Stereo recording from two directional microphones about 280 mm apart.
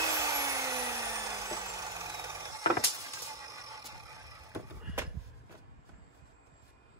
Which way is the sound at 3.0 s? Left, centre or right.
Centre.